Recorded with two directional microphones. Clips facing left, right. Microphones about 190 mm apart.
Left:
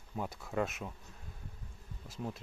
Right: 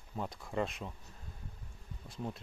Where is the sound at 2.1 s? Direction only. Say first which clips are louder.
Even; centre (ahead or behind).